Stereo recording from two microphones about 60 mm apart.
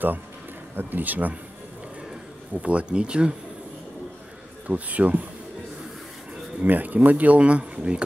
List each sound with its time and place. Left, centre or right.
0.7 s speech: right
2.5 s speech: right
4.6 s speech: right
6.6 s speech: right